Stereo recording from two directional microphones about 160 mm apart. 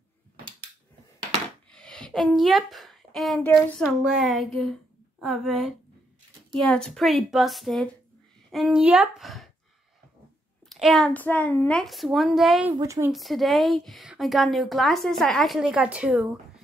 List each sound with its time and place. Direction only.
1.7 s a sound: 5° left (ahead or behind)
3.8 s a woman's voice: 5° right (ahead or behind)
10.7 s a woman's voice: centre (ahead or behind)
12.7 s speech: 20° right (ahead or behind)
13.1 s a woman's voice: centre (ahead or behind)